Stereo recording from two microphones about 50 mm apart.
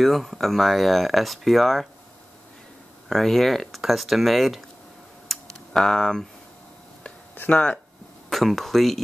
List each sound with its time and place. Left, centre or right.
0.0 s speech: centre
3.1 s speech: centre
5.3 s computer keyboard: centre
7.5 s speech: centre
8.3 s speech: centre